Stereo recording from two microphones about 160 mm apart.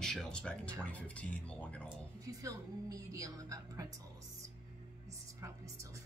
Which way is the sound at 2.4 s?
20° right (ahead or behind).